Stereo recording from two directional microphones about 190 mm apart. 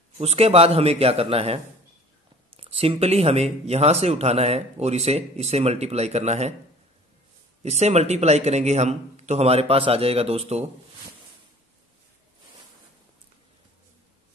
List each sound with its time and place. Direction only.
0.2 s speech: 35° right (ahead or behind)
7.6 s speech: 35° right (ahead or behind)